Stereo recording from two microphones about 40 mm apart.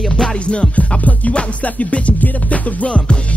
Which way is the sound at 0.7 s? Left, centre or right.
Left.